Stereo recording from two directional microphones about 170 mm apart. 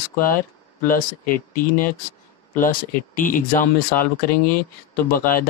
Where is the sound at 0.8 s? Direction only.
55° left (ahead or behind).